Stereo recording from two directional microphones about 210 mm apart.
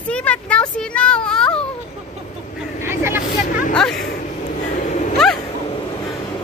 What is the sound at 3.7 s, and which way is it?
Speech, 5° left (ahead or behind).